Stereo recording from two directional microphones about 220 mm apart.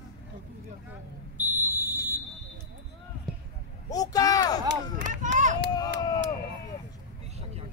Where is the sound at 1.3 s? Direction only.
10° right (ahead or behind).